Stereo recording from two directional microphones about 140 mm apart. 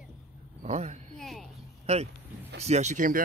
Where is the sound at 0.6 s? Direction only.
50° right (ahead or behind).